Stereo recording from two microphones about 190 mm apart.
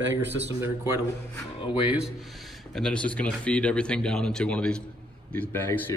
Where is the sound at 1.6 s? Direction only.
25° left (ahead or behind).